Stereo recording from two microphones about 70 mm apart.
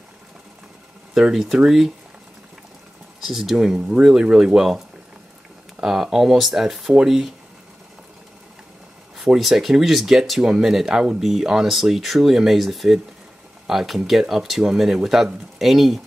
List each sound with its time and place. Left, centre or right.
1.1 s speech: centre
3.2 s speech: centre
9.2 s speech: centre